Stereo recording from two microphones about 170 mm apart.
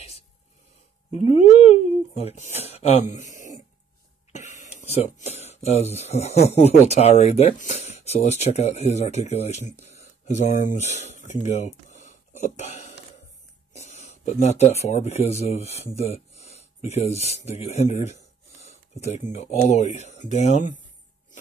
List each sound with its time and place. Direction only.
1.1 s speech: 40° left (ahead or behind)